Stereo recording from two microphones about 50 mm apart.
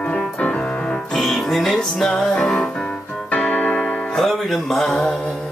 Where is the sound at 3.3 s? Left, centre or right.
Left.